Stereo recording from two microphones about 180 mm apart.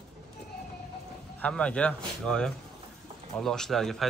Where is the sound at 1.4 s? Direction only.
5° left (ahead or behind).